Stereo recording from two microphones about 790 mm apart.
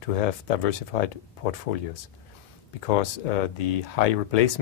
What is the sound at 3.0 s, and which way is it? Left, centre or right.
Speech, left.